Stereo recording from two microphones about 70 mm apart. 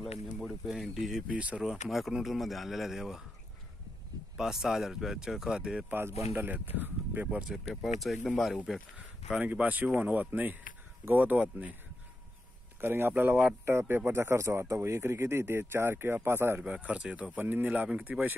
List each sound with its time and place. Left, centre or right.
0.0 s speech: centre
1.2 s speech: centre
1.6 s speech: centre
4.4 s speech: centre
5.9 s speech: right
7.2 s speech: centre
7.5 s speech: centre
8.9 s speech: centre
12.8 s speech: right
16.6 s speech: centre
17.4 s speech: right